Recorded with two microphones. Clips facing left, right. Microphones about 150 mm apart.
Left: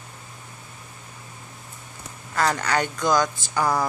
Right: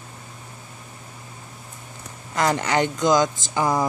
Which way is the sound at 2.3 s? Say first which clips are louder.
Right 2 dB; 20° right (ahead or behind).